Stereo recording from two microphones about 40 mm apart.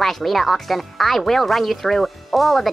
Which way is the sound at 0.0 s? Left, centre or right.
Centre.